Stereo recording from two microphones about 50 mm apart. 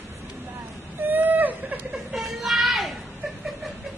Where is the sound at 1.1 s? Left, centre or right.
Right.